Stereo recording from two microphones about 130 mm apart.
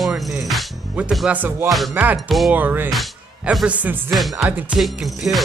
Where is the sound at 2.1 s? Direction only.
Centre (ahead or behind).